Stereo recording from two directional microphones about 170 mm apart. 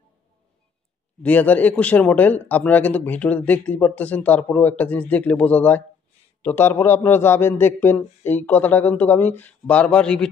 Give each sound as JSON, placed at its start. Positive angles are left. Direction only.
{"t": 1.2, "sound": "speech", "side_deg": 10}